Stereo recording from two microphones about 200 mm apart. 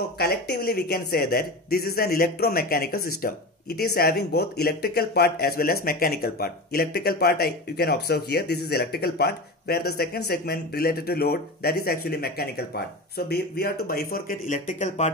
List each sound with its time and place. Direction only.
0.2 s speech: 50° left (ahead or behind); by 15.1 s 35° left (ahead or behind)